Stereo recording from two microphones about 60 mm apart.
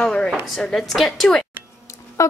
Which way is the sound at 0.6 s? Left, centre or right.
Centre.